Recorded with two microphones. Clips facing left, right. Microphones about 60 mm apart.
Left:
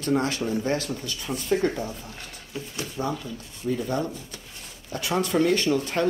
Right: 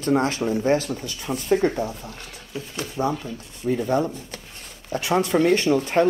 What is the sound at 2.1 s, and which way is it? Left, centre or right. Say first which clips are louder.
Speech: right 2 dB; right.